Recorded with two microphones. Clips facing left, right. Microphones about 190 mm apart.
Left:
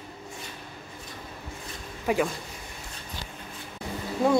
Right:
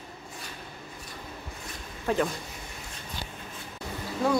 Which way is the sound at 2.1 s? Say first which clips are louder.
Left 2 dB; 10° left (ahead or behind).